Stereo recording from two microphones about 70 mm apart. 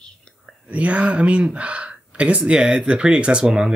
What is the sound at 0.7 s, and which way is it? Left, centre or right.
Speech, centre.